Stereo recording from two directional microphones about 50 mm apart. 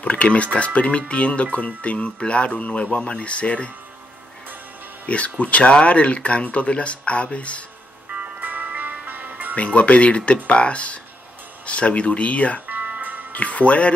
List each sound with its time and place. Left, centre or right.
0.0 s speech: left
5.0 s speech: left
8.1 s music: right
9.6 s speech: left
12.6 s music: right
13.3 s speech: left